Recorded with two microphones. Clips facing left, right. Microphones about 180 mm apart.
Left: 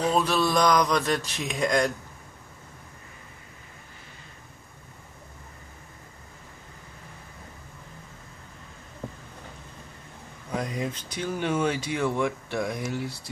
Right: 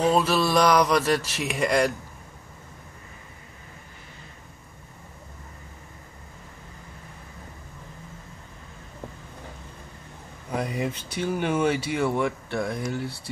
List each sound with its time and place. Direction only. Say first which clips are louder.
0.1 s speech: right 2 dB; 5° right (ahead or behind)
1.2 s speech: right 3 dB; 85° right
1.5 s speech: right 2 dB; 10° right (ahead or behind)
10.5 s speech: right 2 dB; 10° right (ahead or behind)